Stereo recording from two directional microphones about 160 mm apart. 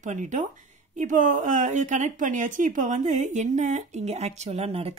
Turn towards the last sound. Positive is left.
turn(degrees=-40)  # may be behind; listen again after turning